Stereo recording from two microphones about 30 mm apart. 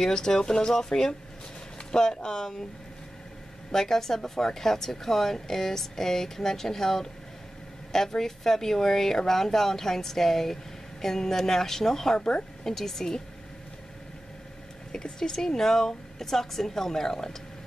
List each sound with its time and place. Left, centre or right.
0.0 s speech: left
3.7 s speech: centre
14.9 s speech: left